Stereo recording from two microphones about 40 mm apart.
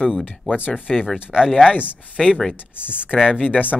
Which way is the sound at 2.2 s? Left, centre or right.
Centre.